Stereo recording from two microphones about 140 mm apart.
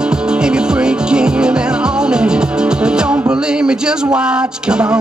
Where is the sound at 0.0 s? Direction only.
5° right (ahead or behind).